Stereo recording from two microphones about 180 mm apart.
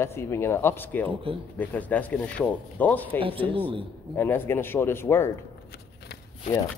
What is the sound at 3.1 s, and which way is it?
Speech, 30° right (ahead or behind).